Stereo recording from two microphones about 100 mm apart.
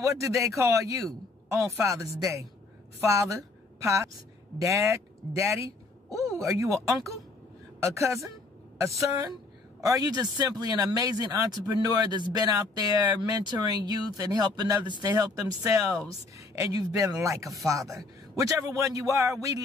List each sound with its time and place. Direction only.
0.2 s speech: 30° right (ahead or behind)